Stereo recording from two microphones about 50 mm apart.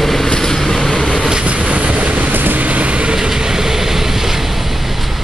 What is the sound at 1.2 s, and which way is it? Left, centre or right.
Vehicle, centre.